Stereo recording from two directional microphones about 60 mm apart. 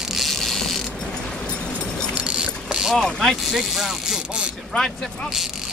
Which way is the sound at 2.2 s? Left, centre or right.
Centre.